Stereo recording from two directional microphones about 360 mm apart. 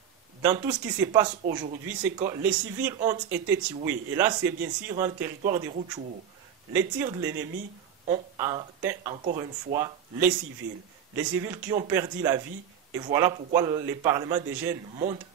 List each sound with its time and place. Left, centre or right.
0.4 s speech: centre
6.7 s speech: centre
9.8 s speech: centre